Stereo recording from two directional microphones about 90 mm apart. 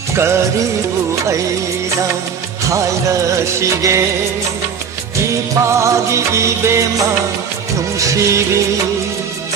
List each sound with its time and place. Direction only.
0.1 s music of bollywood: 30° right (ahead or behind)
3.5 s music: 35° right (ahead or behind)
5.2 s music: 30° right (ahead or behind)
8.1 s music: 35° right (ahead or behind)